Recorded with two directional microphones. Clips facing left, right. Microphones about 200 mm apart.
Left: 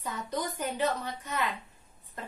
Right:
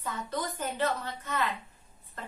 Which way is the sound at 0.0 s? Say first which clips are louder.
Even; 15° left (ahead or behind).